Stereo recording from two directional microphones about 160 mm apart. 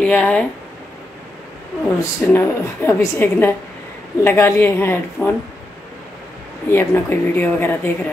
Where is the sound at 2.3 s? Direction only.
15° left (ahead or behind).